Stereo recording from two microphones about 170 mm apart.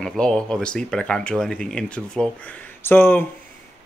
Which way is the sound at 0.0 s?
5° left (ahead or behind).